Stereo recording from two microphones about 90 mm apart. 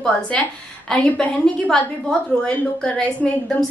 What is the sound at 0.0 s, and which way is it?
A woman's voice, 10° left (ahead or behind).